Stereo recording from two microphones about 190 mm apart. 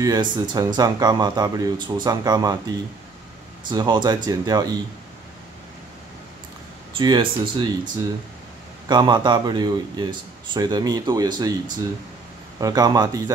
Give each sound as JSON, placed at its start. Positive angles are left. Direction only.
{"t": 0.0, "sound": "speech", "side_deg": -20}
{"t": 3.7, "sound": "speech", "side_deg": -25}
{"t": 6.9, "sound": "speech", "side_deg": -25}